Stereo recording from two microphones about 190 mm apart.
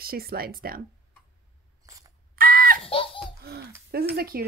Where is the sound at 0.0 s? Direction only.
50° right (ahead or behind).